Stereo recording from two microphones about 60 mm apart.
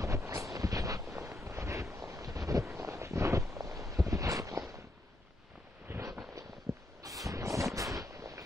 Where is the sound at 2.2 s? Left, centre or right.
Right.